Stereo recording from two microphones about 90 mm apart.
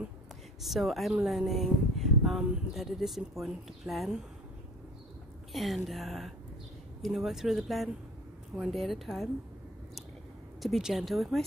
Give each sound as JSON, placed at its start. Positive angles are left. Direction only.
{"t": 0.6, "sound": "speech", "side_deg": 0}
{"t": 5.5, "sound": "speech", "side_deg": 0}
{"t": 10.6, "sound": "speech", "side_deg": -5}